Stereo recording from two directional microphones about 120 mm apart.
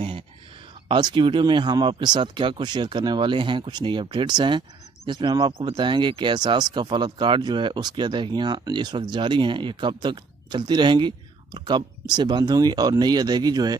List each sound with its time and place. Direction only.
0.8 s speech: 45° right (ahead or behind)